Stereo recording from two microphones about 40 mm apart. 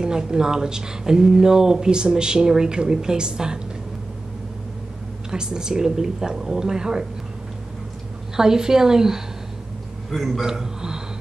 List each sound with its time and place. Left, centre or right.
0.0 s speech: centre
5.3 s speech: centre
8.4 s speech: centre
10.4 s speech: centre